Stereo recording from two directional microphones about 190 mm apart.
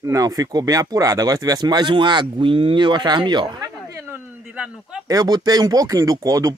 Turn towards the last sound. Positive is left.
turn(degrees=-20)  # may be behind; listen again after turning